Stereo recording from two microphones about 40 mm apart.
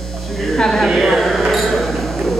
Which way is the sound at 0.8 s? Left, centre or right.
Centre.